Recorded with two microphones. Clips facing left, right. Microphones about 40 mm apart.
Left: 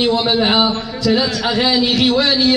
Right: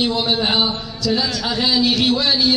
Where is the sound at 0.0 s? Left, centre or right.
Centre.